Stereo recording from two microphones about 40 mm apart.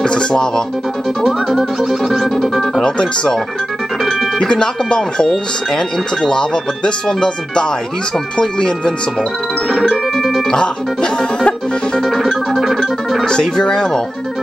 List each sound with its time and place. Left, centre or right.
0.0 s music: centre
1.2 s speech: centre
2.8 s speech: left
4.4 s speech: left
9.7 s music: centre
10.5 s speech: centre
12.0 s speech: centre
13.2 s speech: centre